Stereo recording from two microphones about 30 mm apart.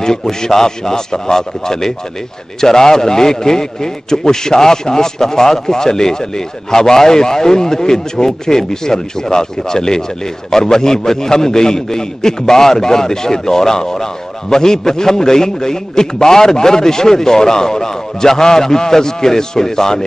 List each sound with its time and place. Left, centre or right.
0.0 s a man's voice: left